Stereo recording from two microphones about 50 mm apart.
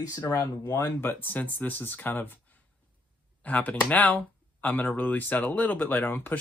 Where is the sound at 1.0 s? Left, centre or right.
Left.